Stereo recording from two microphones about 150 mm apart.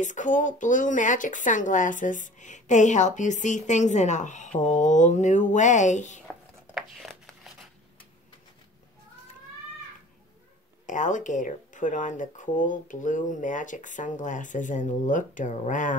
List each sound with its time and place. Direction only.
0.0 s speech: 55° left (ahead or behind)
6.2 s tearing: centre (ahead or behind)
10.9 s speech: 55° left (ahead or behind)